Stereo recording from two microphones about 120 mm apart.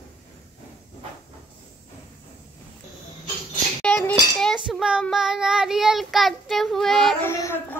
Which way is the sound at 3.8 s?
5° left (ahead or behind).